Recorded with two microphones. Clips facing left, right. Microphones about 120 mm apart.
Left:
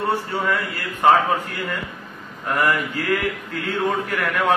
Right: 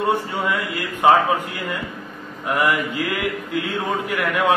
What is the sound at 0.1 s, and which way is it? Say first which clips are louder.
A man's voice: right 1 dB; 15° right (ahead or behind).